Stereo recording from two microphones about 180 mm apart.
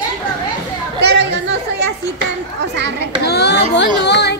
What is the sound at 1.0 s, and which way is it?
Speech, 75° right (ahead or behind).